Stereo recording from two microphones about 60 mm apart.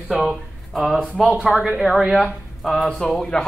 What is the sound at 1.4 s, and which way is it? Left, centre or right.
Speech, centre.